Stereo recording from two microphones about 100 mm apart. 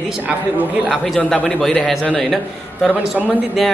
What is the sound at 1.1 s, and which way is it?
A man's voice, 10° left (ahead or behind).